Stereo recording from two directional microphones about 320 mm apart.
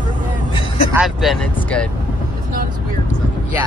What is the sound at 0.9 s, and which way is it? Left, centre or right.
Speech, centre.